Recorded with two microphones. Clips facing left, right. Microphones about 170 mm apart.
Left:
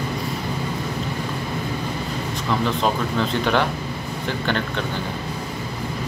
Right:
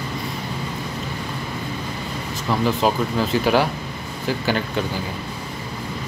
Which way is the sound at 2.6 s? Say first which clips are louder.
Right 4 dB; 5° right (ahead or behind).